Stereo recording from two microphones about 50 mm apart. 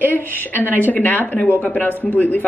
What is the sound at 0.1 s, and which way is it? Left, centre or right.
A woman's voice, left.